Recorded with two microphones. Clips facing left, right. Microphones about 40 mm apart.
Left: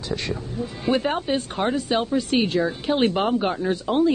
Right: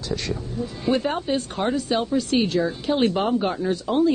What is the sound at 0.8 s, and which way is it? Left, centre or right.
Speech, left.